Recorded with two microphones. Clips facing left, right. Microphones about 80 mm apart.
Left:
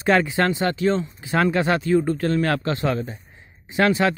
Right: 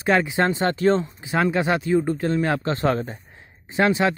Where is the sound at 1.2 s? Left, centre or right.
Centre.